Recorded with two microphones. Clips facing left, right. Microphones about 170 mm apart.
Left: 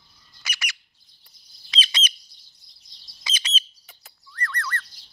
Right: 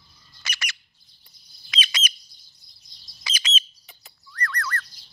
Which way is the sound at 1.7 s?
30° left (ahead or behind).